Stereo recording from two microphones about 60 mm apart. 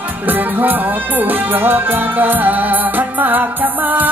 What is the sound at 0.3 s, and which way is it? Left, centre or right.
Music, right.